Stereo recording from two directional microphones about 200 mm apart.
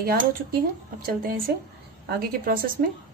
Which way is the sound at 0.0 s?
50° right (ahead or behind).